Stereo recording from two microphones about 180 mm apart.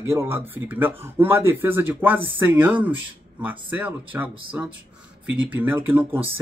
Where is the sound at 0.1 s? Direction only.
15° right (ahead or behind).